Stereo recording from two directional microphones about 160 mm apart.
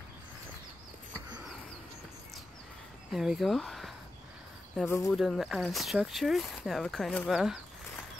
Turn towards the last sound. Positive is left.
turn(degrees=0)  # may be behind; listen again after turning